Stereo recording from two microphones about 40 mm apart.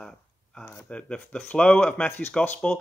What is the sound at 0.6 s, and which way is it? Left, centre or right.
Speech, left.